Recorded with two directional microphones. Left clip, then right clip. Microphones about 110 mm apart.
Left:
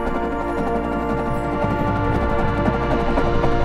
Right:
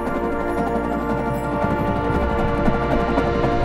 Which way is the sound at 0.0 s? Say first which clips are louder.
Even; 5° right (ahead or behind).